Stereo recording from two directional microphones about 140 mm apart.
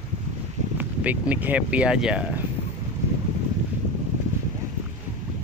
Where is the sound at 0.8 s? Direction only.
10° right (ahead or behind).